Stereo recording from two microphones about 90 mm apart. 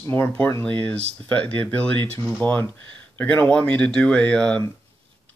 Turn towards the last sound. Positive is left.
turn(degrees=10)  # may be behind; listen again after turning